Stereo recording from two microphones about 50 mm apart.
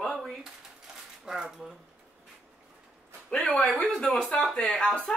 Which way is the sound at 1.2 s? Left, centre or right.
Centre.